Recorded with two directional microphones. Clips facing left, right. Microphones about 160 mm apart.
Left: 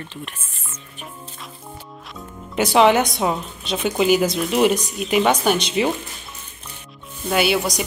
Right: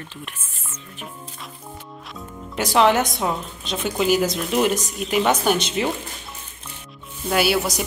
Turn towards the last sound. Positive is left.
turn(degrees=-5)  # may be behind; listen again after turning